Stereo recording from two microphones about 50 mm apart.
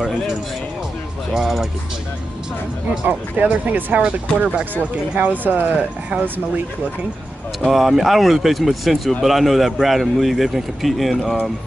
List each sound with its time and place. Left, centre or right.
1.3 s speech: centre
3.1 s speech: right
5.8 s speech: right
6.2 s speech: right
7.6 s a man's voice: centre